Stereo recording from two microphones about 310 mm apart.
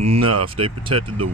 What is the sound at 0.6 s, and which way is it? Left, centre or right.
Speech, centre.